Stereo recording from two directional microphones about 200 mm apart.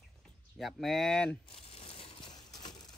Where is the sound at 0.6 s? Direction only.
Centre (ahead or behind).